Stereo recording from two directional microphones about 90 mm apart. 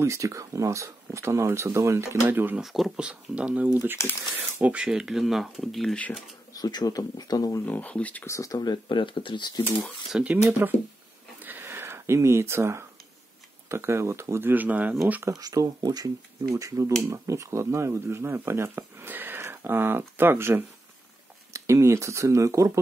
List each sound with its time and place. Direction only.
0.0 s speech: 35° right (ahead or behind)
2.2 s speech: 20° right (ahead or behind)
2.6 s speech: centre (ahead or behind)
3.0 s speech: 15° right (ahead or behind)
4.8 s speech: 5° right (ahead or behind)
6.5 s speech: 45° left (ahead or behind)
7.6 s speech: 20° left (ahead or behind)
8.3 s speech: 40° left (ahead or behind); by 9.5 s 65° left (ahead or behind)
10.1 s speech: 15° right (ahead or behind)
11.4 s a sound: 25° right (ahead or behind)
13.7 s speech: 30° right (ahead or behind)
15.2 s speech: 40° right (ahead or behind)